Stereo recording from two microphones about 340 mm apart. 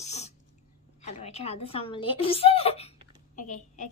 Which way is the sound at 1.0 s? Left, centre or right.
Centre.